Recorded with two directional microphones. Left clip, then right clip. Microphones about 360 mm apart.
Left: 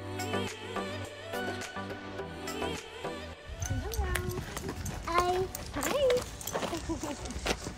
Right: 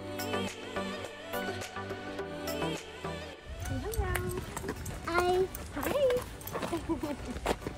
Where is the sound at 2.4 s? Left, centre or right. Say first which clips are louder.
Even; centre.